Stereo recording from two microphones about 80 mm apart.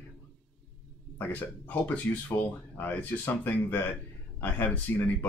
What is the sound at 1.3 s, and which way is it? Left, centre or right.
Speech, centre.